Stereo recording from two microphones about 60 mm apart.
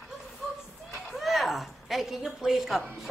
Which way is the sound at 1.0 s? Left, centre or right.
Centre.